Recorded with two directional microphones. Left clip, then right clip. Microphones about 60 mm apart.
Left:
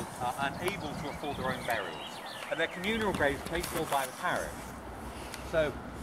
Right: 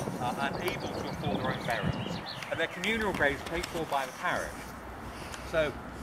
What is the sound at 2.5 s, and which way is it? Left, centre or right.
Speech, centre.